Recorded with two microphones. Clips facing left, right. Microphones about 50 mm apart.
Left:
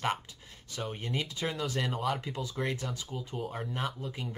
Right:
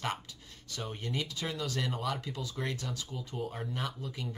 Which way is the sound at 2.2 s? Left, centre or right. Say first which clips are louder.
Left 3 dB; left.